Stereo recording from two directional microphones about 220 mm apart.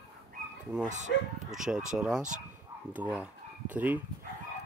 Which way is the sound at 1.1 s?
55° left (ahead or behind).